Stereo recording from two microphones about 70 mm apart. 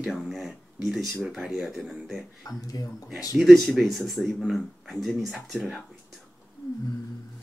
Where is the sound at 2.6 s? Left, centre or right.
Left.